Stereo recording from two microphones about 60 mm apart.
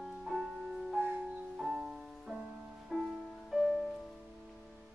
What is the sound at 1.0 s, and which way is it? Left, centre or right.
Music, centre.